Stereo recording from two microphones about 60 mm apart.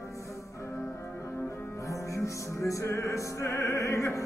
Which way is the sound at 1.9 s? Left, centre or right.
Left.